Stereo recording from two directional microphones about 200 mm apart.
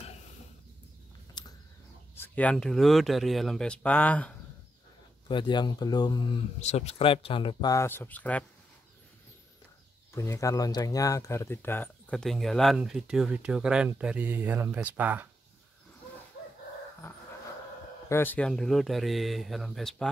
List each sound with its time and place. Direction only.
1.4 s a sound: 20° left (ahead or behind)
2.1 s speech: 10° left (ahead or behind)
5.3 s speech: 25° left (ahead or behind)
6.6 s speech: 35° left (ahead or behind); by 8.5 s 5° left (ahead or behind)
10.1 s speech: 15° left (ahead or behind); by 15.2 s 10° right (ahead or behind)
18.0 s speech: 10° left (ahead or behind)